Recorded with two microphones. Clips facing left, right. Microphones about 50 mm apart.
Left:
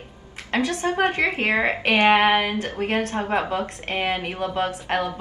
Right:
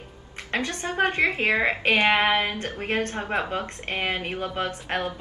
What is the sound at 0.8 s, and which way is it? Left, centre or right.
A woman's voice, left.